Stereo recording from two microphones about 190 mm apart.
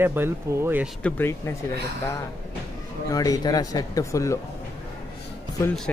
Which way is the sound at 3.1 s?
20° left (ahead or behind).